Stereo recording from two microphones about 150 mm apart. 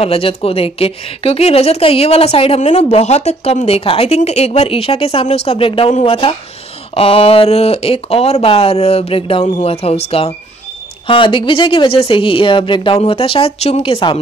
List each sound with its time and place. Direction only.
0.0 s a woman's voice: 40° left (ahead or behind)